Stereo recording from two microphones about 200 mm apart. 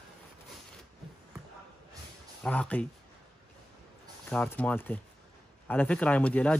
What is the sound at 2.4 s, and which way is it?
Speech, 5° left (ahead or behind).